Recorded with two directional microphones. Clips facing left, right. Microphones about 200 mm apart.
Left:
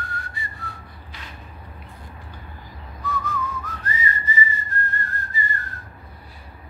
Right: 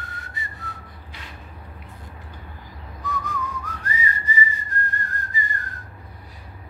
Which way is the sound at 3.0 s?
15° right (ahead or behind).